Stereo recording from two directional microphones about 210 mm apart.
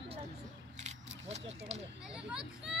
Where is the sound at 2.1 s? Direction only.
5° right (ahead or behind).